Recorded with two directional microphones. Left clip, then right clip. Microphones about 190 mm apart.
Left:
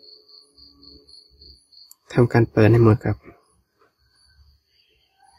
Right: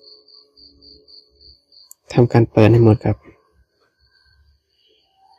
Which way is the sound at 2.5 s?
15° right (ahead or behind).